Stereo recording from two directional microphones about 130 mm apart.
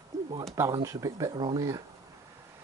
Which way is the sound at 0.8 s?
25° right (ahead or behind).